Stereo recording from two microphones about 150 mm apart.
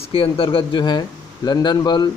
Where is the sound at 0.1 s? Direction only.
35° left (ahead or behind).